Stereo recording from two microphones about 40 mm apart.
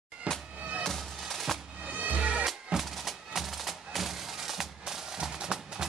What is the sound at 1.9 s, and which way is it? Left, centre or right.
Music, right.